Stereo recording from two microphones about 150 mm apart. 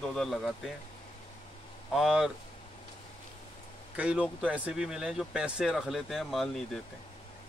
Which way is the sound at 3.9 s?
5° right (ahead or behind).